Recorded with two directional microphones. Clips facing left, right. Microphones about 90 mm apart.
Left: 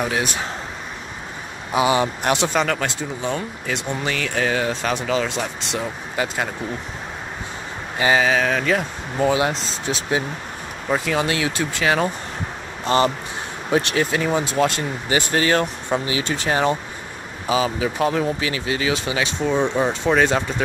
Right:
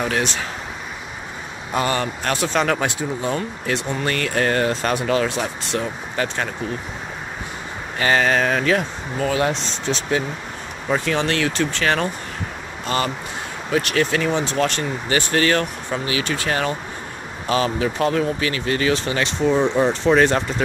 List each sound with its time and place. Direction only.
0.0 s speech: 10° left (ahead or behind)
1.7 s speech: 10° left (ahead or behind)
2.5 s speech: 5° right (ahead or behind)
6.1 s speech: 10° left (ahead or behind)
8.0 s speech: 5° left (ahead or behind)
9.2 s speech: 15° left (ahead or behind)
9.5 s speech: 5° left (ahead or behind)
12.8 s speech: 25° left (ahead or behind)
17.5 s speech: 5° left (ahead or behind)